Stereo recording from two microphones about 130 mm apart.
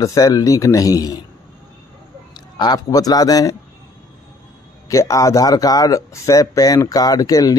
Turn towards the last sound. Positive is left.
turn(degrees=30)  # may be behind; listen again after turning